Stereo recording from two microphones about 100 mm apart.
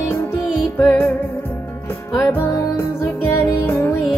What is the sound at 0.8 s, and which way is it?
Music, 20° left (ahead or behind).